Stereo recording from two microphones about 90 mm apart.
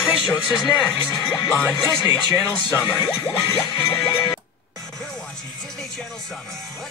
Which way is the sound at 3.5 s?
75° left (ahead or behind).